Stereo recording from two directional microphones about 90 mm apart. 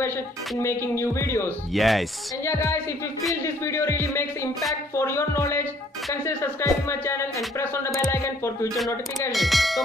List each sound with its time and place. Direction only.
0.6 s speech: 30° left (ahead or behind)
1.7 s speech: centre (ahead or behind)
2.4 s speech: 30° left (ahead or behind)
9.3 s speech: centre (ahead or behind)